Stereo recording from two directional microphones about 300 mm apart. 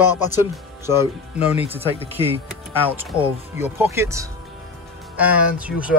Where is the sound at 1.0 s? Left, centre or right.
Centre.